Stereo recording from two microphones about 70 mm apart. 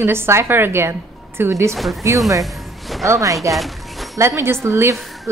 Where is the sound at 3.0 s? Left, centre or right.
Right.